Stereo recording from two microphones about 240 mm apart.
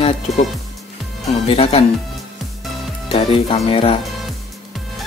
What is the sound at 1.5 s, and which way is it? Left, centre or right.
Speech, left.